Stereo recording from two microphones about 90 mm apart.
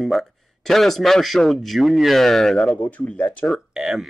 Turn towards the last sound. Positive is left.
turn(degrees=-5)  # may be behind; listen again after turning